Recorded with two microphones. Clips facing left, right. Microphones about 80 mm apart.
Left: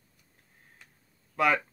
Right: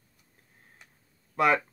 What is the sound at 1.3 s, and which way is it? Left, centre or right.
Speech, right.